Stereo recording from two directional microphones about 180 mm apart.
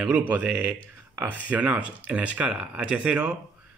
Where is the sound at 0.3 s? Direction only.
5° right (ahead or behind).